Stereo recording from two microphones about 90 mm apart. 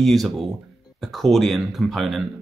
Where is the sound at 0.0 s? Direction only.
Centre (ahead or behind).